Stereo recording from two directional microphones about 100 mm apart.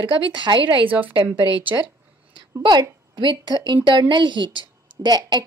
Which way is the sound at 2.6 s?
45° right (ahead or behind).